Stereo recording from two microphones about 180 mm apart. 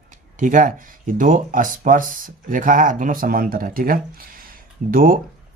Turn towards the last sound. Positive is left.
turn(degrees=-50)  # may be behind; listen again after turning